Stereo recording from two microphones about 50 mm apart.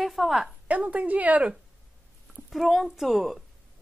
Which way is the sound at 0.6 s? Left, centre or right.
Right.